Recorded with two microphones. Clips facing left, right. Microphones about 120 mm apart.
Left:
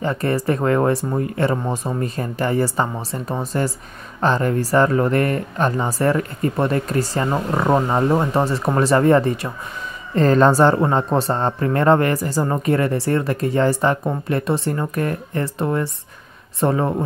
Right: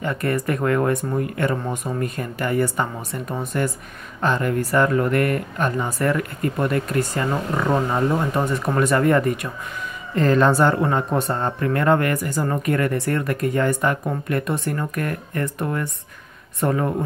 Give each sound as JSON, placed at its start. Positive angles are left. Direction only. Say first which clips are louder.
{"t": 0.0, "sound": "a woman's voice", "louder": "left 2 dB", "side_deg": 30}
{"t": 10.1, "sound": "a woman's voice", "louder": "left 3 dB", "side_deg": 40}